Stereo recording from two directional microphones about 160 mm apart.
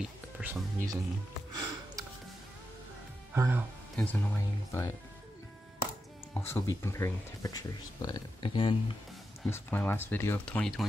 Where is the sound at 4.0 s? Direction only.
10° left (ahead or behind).